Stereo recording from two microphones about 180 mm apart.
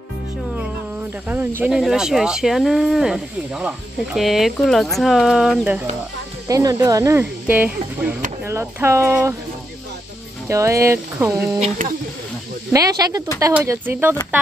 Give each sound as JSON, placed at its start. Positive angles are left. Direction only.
{"t": 1.2, "sound": "speech", "side_deg": -10}
{"t": 6.4, "sound": "speech", "side_deg": -20}
{"t": 10.5, "sound": "speech", "side_deg": -15}
{"t": 11.8, "sound": "speech", "side_deg": -50}
{"t": 12.7, "sound": "speech", "side_deg": -20}